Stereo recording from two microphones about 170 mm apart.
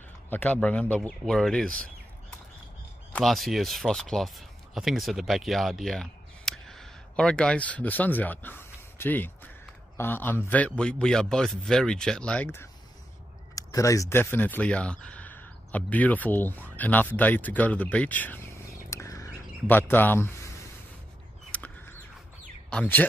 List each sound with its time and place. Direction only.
0.3 s speech: 5° left (ahead or behind)
3.1 s a man's voice: 5° left (ahead or behind)
18.9 s bird: 20° left (ahead or behind)
22.7 s speech: 10° left (ahead or behind)